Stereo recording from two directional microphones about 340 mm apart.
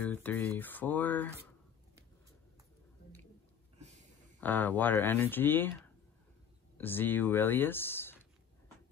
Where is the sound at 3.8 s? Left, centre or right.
Centre.